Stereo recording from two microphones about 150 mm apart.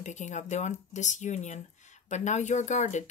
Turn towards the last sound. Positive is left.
turn(degrees=50)  # may be behind; listen again after turning